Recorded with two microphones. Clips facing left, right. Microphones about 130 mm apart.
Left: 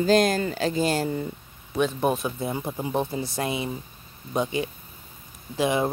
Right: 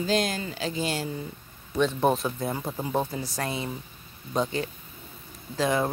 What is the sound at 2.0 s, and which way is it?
Speech, 5° left (ahead or behind).